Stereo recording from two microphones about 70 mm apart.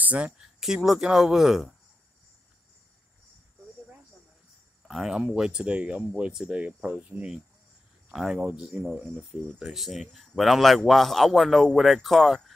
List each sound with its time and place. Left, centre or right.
0.0 s speech: centre
0.4 s a man's voice: centre
4.8 s speech: centre
8.4 s speech: centre
9.5 s a man's voice: centre